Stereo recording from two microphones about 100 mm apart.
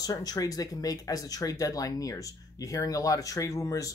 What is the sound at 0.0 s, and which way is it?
Speech, 40° left (ahead or behind).